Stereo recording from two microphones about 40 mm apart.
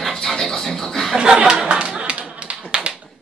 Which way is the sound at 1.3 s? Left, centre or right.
Right.